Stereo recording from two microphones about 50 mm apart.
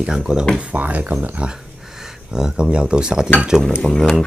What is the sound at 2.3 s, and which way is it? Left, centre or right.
Speech, centre.